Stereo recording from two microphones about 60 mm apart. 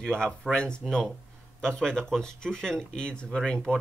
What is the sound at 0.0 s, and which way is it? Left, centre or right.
Speech, centre.